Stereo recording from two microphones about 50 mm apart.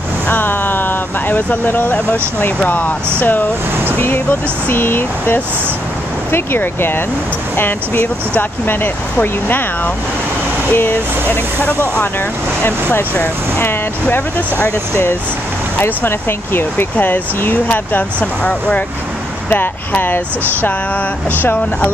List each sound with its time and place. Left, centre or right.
0.3 s vehicle: left
3.2 s speech: left
10.7 s speech: left
13.1 s speech: left
15.8 s speech: left
19.5 s speech: left
21.3 s speech: left